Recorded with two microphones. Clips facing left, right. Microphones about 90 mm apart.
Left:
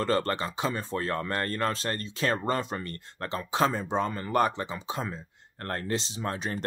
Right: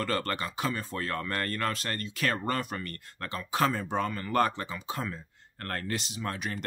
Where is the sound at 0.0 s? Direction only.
25° left (ahead or behind).